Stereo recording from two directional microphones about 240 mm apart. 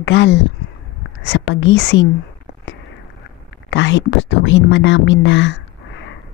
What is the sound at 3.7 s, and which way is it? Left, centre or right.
Speech, left.